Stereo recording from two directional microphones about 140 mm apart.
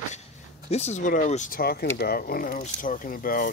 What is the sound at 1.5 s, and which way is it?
Speech, 90° left.